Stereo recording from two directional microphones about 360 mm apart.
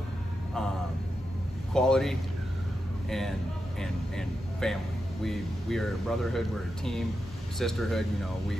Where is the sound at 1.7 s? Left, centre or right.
Centre.